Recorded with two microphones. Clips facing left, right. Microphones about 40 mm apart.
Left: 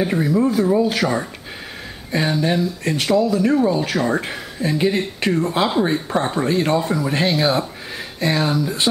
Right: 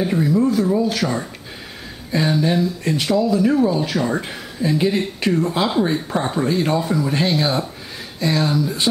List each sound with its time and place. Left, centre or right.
0.0 s speech: centre